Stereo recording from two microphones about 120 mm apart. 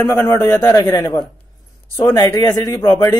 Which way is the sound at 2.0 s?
25° left (ahead or behind).